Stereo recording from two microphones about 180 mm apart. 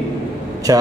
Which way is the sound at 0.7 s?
20° right (ahead or behind).